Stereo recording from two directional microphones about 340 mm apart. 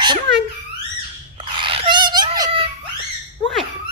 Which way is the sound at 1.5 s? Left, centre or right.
Centre.